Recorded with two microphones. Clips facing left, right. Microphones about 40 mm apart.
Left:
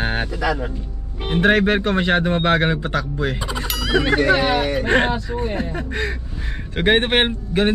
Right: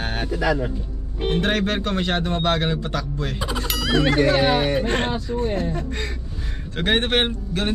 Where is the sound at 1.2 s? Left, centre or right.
Left.